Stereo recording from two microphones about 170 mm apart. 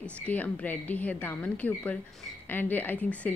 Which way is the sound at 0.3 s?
10° left (ahead or behind).